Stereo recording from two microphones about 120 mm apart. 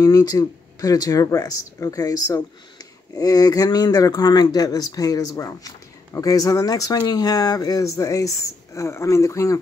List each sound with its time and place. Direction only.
0.0 s speech: 30° left (ahead or behind)